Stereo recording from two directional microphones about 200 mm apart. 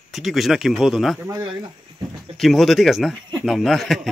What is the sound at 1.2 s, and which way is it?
Speech, 20° right (ahead or behind).